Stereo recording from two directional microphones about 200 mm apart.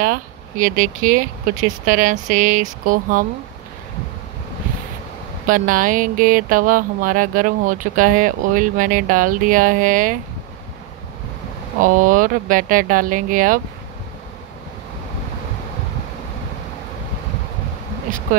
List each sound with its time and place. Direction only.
0.0 s speech: 40° right (ahead or behind)
5.5 s speech: 40° right (ahead or behind)
11.8 s speech: 40° right (ahead or behind)